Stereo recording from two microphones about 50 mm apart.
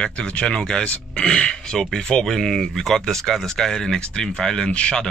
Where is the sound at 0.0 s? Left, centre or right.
Centre.